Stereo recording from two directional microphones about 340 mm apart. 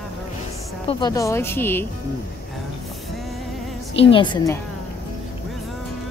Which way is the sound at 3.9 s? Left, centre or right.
Centre.